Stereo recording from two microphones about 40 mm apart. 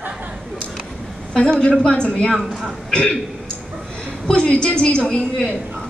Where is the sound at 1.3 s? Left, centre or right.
Left.